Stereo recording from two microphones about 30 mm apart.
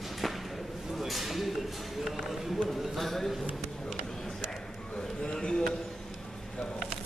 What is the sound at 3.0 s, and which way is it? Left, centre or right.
Speech, centre.